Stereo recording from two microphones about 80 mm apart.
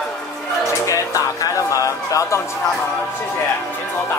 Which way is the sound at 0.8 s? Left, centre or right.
Left.